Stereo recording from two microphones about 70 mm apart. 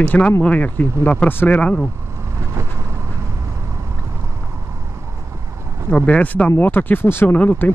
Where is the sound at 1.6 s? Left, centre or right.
Centre.